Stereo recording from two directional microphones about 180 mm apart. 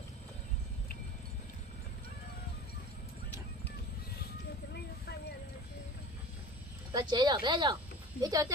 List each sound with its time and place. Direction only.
6.9 s speech: 25° right (ahead or behind)